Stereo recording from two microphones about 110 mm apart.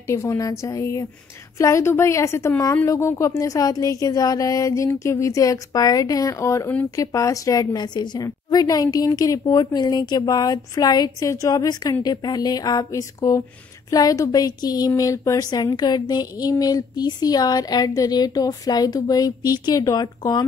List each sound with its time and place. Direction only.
0.1 s a woman's voice: 25° left (ahead or behind)